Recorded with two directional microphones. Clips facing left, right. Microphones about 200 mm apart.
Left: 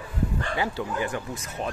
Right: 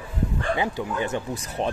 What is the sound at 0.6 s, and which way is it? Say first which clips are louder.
Speech: right 2 dB; 20° right (ahead or behind).